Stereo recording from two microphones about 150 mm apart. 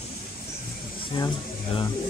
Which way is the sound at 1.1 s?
25° left (ahead or behind).